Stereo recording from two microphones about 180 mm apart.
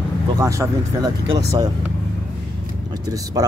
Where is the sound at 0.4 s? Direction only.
15° right (ahead or behind).